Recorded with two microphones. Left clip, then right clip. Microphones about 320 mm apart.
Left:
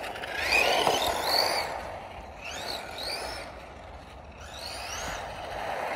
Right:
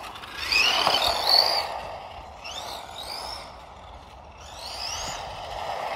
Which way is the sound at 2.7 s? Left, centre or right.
Right.